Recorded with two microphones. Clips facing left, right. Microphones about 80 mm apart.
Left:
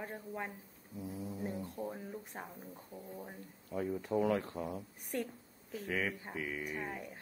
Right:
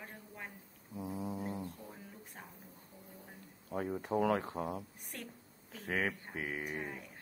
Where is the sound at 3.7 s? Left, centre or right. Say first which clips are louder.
Even; right.